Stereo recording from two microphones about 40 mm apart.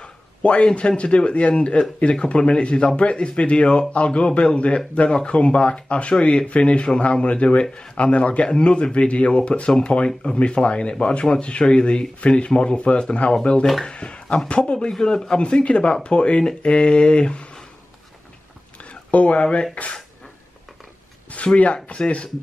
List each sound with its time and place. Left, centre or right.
0.0 s a sound: left
0.7 s speech: left
13.3 s speech: left
19.0 s speech: left
21.3 s speech: left